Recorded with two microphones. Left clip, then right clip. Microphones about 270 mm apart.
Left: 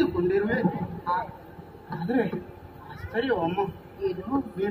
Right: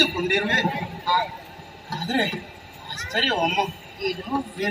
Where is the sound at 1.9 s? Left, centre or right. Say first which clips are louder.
Right 3 dB; right.